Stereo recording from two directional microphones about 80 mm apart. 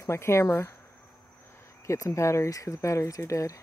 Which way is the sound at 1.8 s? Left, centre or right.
Left.